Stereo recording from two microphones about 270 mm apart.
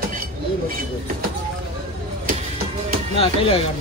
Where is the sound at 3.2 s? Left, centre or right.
Left.